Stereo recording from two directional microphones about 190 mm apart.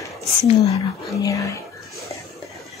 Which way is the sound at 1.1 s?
15° left (ahead or behind).